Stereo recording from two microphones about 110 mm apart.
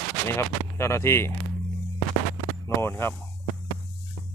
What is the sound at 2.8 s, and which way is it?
Speech, 20° left (ahead or behind).